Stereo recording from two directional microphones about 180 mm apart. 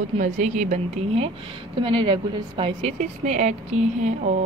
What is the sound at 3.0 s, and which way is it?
A woman's voice, 40° right (ahead or behind).